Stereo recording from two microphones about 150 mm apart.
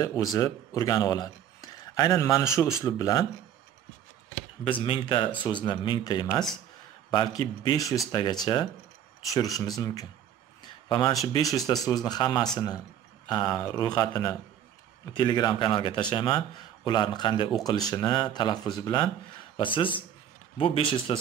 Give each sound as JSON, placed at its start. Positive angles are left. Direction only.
{"t": 0.0, "sound": "speech", "side_deg": 20}
{"t": 4.6, "sound": "a man's voice", "side_deg": 35}
{"t": 10.6, "sound": "a sound", "side_deg": 30}
{"t": 11.9, "sound": "a man's voice", "side_deg": 25}